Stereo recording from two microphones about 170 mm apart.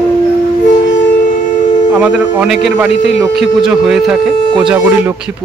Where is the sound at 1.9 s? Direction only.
5° right (ahead or behind).